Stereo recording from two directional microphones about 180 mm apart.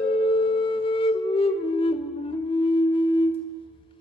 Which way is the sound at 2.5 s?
30° left (ahead or behind).